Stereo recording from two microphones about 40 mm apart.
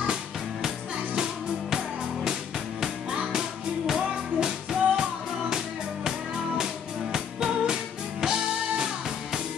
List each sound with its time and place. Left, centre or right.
0.0 s music: centre
3.3 s music: centre
6.6 s music: centre